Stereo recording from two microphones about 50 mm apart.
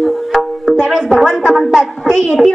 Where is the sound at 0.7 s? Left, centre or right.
Centre.